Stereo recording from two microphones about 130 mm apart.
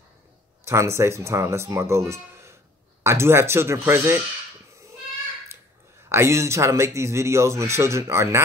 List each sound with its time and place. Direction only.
0.7 s speech: 20° right (ahead or behind)
6.0 s speech: 20° right (ahead or behind)